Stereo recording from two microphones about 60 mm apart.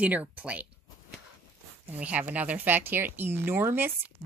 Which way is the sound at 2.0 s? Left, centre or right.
Right.